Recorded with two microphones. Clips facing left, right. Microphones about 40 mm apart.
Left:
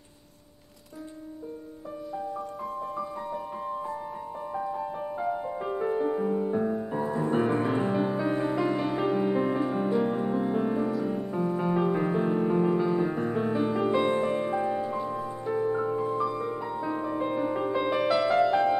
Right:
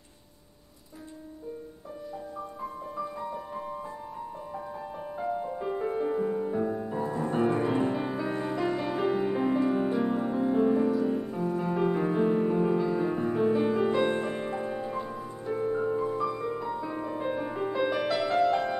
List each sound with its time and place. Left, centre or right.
4.7 s music: centre
11.3 s music: centre
11.8 s music: centre
15.1 s music: centre